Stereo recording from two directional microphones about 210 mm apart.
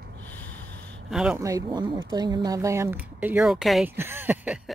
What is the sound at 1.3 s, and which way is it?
Speech, 15° right (ahead or behind).